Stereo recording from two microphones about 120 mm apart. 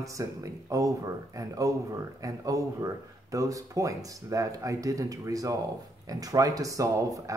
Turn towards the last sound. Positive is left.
turn(degrees=-25)  # may be behind; listen again after turning